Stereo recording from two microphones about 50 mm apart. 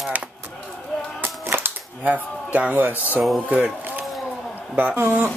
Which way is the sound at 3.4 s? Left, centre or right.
Right.